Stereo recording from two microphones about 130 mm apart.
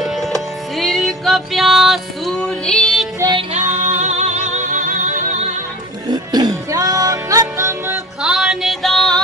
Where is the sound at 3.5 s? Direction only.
65° right (ahead or behind); by 5.3 s 85° right.